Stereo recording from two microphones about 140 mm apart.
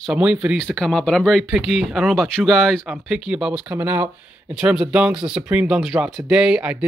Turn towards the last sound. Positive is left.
turn(degrees=-5)  # may be behind; listen again after turning